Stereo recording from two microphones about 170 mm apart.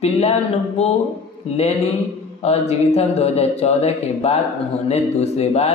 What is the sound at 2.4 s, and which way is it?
Speech, 40° left (ahead or behind).